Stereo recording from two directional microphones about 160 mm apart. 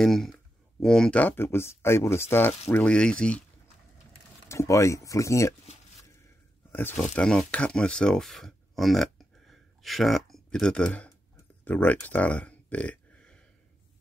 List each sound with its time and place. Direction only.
0.0 s speech: centre (ahead or behind)
4.5 s speech: 20° left (ahead or behind)
6.7 s speech: 15° left (ahead or behind)